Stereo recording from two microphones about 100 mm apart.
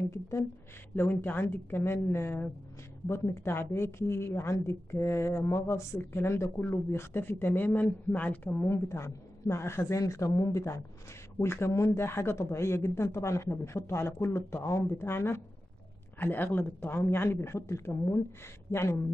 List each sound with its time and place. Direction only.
0.9 s a woman's voice: 25° left (ahead or behind)